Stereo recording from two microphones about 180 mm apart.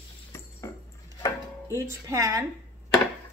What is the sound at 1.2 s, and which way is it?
Music, 20° left (ahead or behind).